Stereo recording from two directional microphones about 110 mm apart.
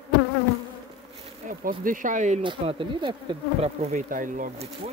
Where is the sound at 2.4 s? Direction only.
50° right (ahead or behind).